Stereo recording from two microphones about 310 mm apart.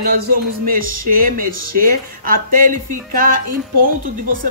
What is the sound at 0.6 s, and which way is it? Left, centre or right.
Speech, right.